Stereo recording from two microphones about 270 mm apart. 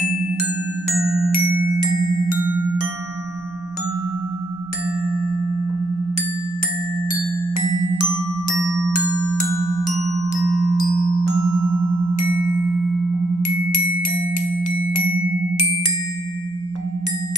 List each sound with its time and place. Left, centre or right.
7.5 s marimba: left